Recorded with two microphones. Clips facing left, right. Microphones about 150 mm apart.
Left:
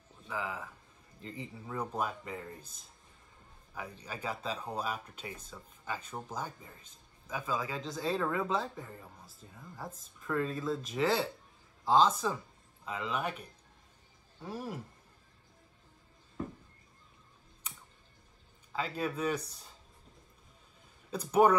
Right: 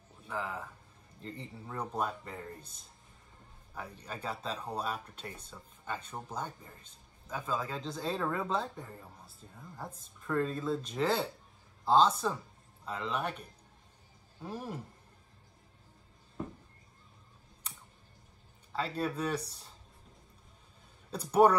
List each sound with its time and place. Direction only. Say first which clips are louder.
0.3 s speech: even; centre (ahead or behind)
3.7 s speech: even; 5° left (ahead or behind)
14.5 s speech: left 1 dB; 5° left (ahead or behind)
18.7 s speech: right 1 dB; 5° left (ahead or behind)
21.1 s speech: right 1 dB; 5° left (ahead or behind)